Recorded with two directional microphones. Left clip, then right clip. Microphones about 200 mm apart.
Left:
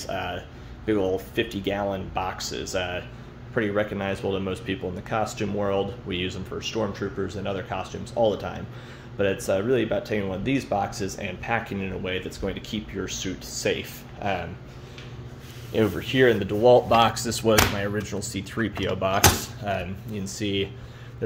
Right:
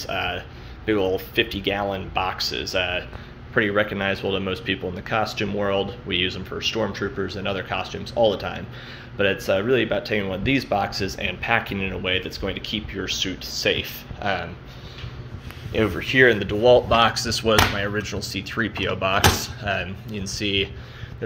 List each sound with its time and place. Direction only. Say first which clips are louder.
0.0 s speech: right 4 dB; 10° left (ahead or behind)
3.5 s speech: right 4 dB; centre (ahead or behind)
15.7 s speech: right 3 dB; 20° left (ahead or behind)
17.8 s speech: right 3 dB; 15° left (ahead or behind)